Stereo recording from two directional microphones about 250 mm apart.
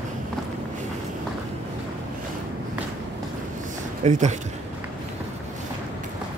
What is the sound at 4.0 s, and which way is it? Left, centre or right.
Speech, right.